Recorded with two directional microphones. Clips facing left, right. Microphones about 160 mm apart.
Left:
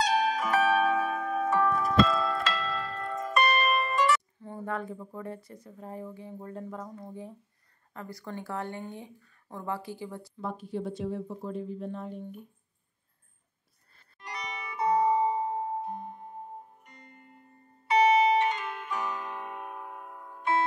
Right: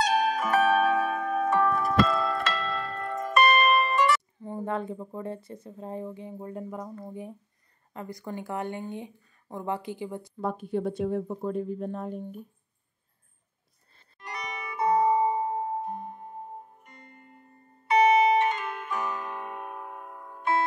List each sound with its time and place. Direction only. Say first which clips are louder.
0.0 s zither: right 2 dB; 55° right (ahead or behind)
4.4 s speech: right 4 dB; 20° right (ahead or behind)
10.3 s speech: right 6 dB; 55° right (ahead or behind)
14.2 s music: right 2 dB; 50° right (ahead or behind)
17.8 s music: right 2 dB; 55° right (ahead or behind)